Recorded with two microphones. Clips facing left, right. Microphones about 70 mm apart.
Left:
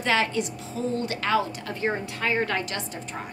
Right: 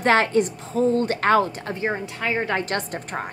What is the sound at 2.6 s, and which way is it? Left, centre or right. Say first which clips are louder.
Speech: right 6 dB; right.